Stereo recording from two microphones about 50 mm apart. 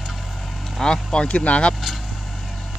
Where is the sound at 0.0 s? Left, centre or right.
Centre.